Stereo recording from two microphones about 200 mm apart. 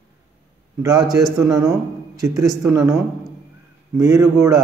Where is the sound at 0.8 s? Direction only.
20° right (ahead or behind).